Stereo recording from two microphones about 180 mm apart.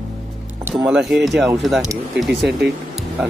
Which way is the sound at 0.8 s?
5° right (ahead or behind).